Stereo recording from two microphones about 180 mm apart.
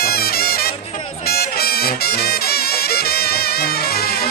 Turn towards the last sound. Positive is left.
turn(degrees=60)  # may be behind; listen again after turning